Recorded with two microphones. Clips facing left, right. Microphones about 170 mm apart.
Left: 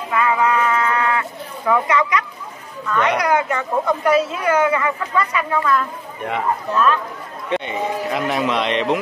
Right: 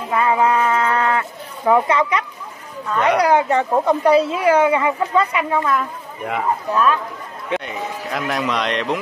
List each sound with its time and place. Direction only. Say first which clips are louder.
0.1 s a sound: right 1 dB; 30° right (ahead or behind)
1.7 s speech: right 2 dB; 25° right (ahead or behind)
5.8 s speech: left 1 dB; 5° right (ahead or behind)
7.4 s a man's voice: left 3 dB; centre (ahead or behind)